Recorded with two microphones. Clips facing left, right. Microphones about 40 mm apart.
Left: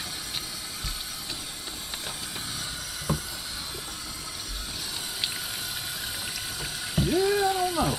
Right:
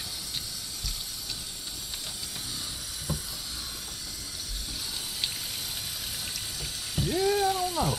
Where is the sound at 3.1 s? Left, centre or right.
Left.